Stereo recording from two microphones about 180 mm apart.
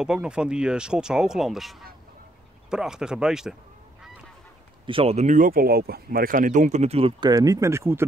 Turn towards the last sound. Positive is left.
turn(degrees=-15)  # may be behind; listen again after turning